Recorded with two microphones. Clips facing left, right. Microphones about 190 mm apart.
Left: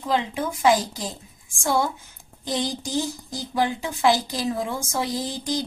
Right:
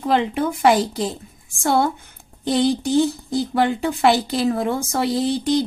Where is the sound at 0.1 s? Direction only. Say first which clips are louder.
Right 5 dB; 65° right (ahead or behind).